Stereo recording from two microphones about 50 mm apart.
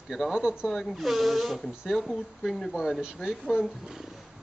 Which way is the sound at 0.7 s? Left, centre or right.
Centre.